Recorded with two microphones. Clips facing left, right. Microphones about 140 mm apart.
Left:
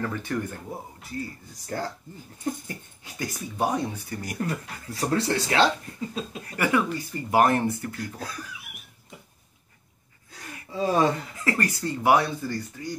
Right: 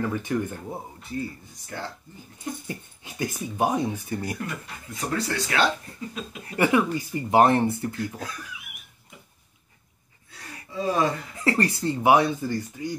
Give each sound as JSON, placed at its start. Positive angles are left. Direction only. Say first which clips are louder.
{"t": 0.0, "sound": "speech", "louder": "right 3 dB", "side_deg": -15}
{"t": 1.7, "sound": "speech", "louder": "left 4 dB", "side_deg": 40}
{"t": 3.0, "sound": "speech", "louder": "right 3 dB", "side_deg": -20}
{"t": 4.4, "sound": "speech", "louder": "left 4 dB", "side_deg": 35}
{"t": 6.4, "sound": "speech", "louder": "right 3 dB", "side_deg": -25}
{"t": 10.7, "sound": "speech", "louder": "left 2 dB", "side_deg": 30}
{"t": 11.3, "sound": "speech", "louder": "right 3 dB", "side_deg": -30}
{"t": 11.8, "sound": "speech", "louder": "right 2 dB", "side_deg": -20}